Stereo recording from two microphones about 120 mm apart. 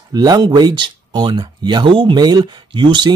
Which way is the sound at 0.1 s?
35° right (ahead or behind).